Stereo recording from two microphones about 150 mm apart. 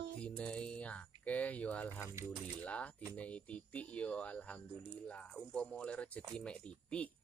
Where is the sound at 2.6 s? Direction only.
10° left (ahead or behind).